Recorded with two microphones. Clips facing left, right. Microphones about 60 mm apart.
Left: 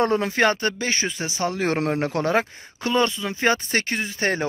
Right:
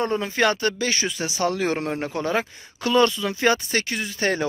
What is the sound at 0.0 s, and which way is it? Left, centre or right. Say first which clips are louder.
Speech: left 3 dB; left.